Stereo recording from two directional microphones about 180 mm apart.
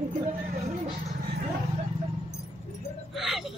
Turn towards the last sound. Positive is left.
turn(degrees=0)  # may be behind; listen again after turning